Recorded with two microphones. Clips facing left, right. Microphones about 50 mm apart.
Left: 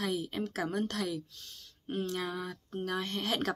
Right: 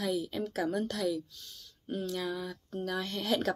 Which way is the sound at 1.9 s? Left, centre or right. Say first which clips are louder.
Even; left.